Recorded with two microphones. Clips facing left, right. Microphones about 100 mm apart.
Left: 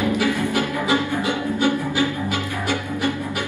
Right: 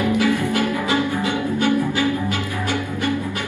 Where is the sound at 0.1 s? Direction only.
20° left (ahead or behind).